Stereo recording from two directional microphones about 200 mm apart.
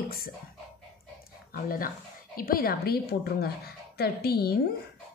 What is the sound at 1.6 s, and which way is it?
A woman's voice, 45° left (ahead or behind).